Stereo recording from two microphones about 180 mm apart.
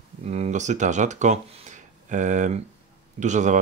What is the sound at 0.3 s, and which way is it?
Speech, 40° right (ahead or behind).